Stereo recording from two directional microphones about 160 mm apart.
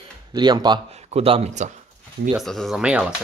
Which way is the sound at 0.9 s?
40° right (ahead or behind).